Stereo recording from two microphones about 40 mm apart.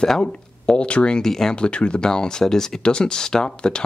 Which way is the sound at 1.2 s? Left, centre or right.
Centre.